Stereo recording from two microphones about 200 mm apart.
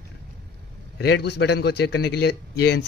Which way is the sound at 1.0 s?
55° left (ahead or behind).